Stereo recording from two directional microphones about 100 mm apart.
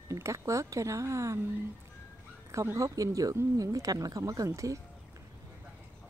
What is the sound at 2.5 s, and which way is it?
Speech, 30° right (ahead or behind).